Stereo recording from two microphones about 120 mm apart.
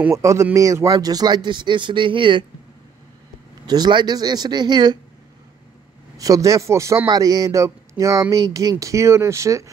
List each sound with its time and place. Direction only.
0.1 s speech: 25° right (ahead or behind); by 2.4 s 45° right (ahead or behind)
3.6 s speech: 35° right (ahead or behind)
6.1 s speech: 30° right (ahead or behind)